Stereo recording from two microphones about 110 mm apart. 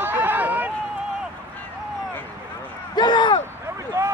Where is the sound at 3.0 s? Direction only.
45° left (ahead or behind).